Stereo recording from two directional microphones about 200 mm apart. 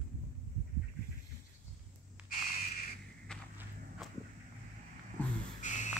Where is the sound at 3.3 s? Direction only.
5° left (ahead or behind).